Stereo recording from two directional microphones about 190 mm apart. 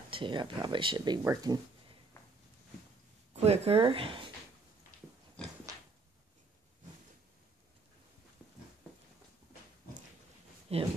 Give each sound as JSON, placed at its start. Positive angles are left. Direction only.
{"t": 0.1, "sound": "speech", "side_deg": -25}
{"t": 3.3, "sound": "speech", "side_deg": -30}
{"t": 5.4, "sound": "dog", "side_deg": 5}
{"t": 10.7, "sound": "speech", "side_deg": -30}